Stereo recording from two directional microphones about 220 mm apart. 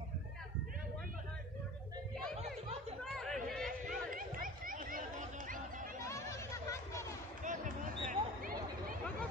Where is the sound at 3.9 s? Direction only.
40° right (ahead or behind).